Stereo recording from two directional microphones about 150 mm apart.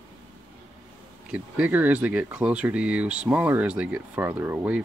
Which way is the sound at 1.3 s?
10° right (ahead or behind).